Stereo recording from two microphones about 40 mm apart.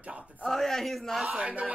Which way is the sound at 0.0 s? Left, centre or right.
Right.